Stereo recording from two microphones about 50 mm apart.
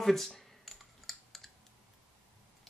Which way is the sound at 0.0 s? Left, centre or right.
Centre.